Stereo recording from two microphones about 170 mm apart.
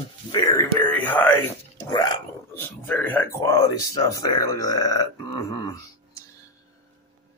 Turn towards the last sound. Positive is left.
turn(degrees=20)  # may be behind; listen again after turning